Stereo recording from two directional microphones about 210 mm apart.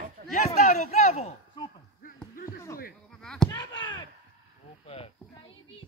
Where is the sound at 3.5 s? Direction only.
20° left (ahead or behind).